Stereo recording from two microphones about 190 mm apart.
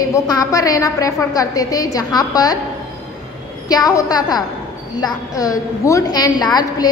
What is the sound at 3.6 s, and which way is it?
A woman's voice, 20° left (ahead or behind).